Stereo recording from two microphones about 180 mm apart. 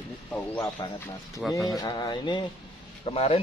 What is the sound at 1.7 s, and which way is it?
Speech, 20° left (ahead or behind).